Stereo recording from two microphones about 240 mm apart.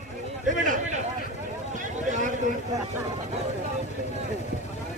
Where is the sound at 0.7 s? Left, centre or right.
Right.